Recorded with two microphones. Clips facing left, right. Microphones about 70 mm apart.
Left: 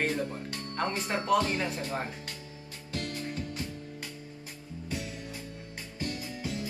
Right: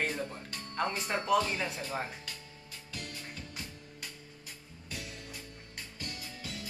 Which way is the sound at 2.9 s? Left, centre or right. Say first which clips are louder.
Left 9 dB; left.